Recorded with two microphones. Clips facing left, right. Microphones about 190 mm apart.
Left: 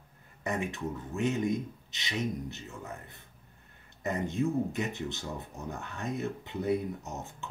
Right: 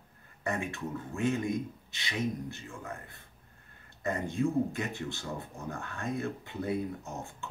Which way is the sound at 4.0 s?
20° left (ahead or behind).